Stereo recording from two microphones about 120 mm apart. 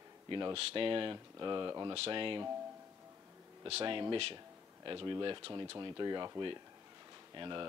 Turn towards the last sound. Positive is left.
turn(degrees=-40)  # may be behind; listen again after turning